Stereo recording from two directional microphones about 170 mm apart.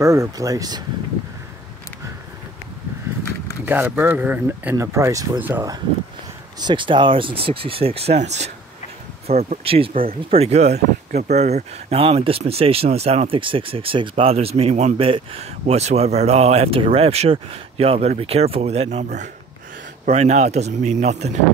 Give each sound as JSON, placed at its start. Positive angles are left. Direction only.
{"t": 0.0, "sound": "speech", "side_deg": -20}
{"t": 3.6, "sound": "speech", "side_deg": -10}
{"t": 6.6, "sound": "speech", "side_deg": -30}